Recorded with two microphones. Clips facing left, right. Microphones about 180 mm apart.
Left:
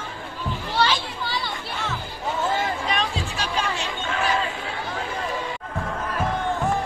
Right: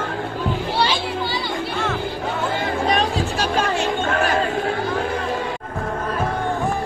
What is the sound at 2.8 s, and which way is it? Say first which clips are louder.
Chatter: right 7 dB; 40° right (ahead or behind).